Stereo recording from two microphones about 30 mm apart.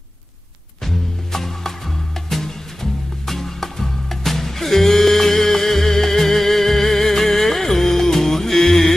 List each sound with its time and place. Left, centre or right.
0.8 s music: centre